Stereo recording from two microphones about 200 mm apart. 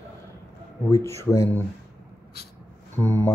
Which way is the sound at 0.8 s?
15° left (ahead or behind).